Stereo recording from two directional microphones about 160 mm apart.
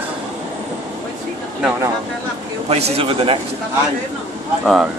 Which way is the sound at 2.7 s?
40° right (ahead or behind).